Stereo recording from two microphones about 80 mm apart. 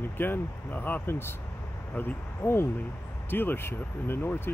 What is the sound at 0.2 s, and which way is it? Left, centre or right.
Speech, left.